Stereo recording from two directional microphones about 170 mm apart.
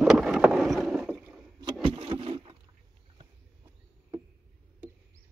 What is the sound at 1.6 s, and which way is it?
Vehicle, 30° right (ahead or behind).